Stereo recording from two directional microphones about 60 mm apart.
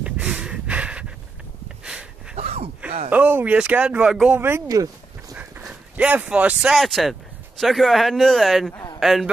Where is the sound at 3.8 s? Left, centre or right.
Right.